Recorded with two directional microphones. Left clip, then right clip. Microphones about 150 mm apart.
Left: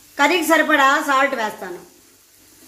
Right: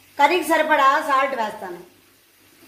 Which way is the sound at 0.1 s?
30° left (ahead or behind).